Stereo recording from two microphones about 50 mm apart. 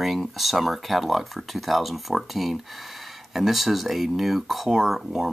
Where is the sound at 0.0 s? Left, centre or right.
Centre.